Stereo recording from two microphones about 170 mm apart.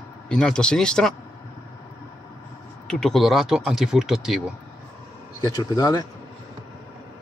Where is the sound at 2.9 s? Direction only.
5° left (ahead or behind).